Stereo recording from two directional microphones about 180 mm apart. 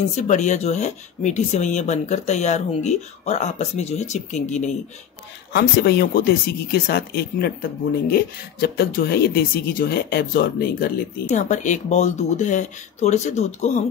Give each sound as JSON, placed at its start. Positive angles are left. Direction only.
{"t": 0.1, "sound": "speech", "side_deg": 40}
{"t": 5.5, "sound": "speech", "side_deg": 60}